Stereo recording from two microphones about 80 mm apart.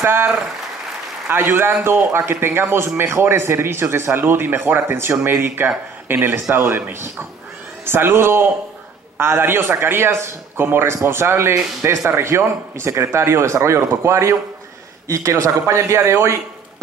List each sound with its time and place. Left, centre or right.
0.0 s speech: right
1.3 s a man's voice: right